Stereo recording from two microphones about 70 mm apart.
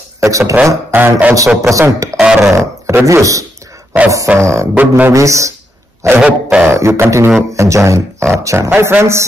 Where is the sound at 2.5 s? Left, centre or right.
Right.